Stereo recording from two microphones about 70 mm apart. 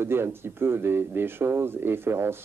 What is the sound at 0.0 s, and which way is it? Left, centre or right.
Speech, right.